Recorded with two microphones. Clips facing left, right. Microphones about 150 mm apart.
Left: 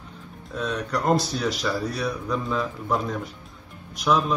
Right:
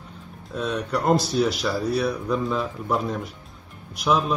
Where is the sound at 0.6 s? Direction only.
Centre (ahead or behind).